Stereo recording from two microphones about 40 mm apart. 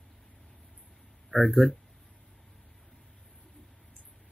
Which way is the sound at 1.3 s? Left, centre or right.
Left.